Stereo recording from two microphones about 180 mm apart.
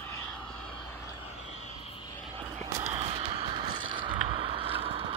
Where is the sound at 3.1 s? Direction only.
30° right (ahead or behind).